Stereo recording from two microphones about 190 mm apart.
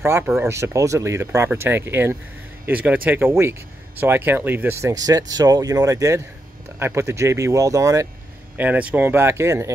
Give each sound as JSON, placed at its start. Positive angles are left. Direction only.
{"t": 0.0, "sound": "speech", "side_deg": -15}